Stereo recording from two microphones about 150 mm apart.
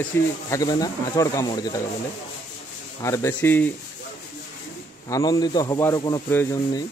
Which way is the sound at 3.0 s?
20° left (ahead or behind).